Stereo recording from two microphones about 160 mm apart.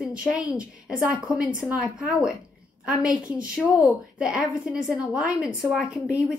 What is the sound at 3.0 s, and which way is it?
Speech, 20° left (ahead or behind).